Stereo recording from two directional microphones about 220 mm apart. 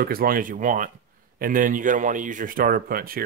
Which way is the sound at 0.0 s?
40° right (ahead or behind).